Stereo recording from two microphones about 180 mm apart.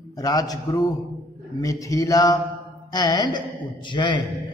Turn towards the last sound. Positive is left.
turn(degrees=25)  # may be behind; listen again after turning